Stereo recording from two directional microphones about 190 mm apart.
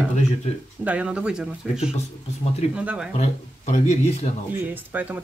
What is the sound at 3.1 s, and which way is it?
Speech, 35° left (ahead or behind).